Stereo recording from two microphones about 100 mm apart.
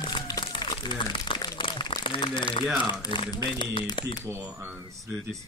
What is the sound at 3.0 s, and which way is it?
Speech, 45° left (ahead or behind).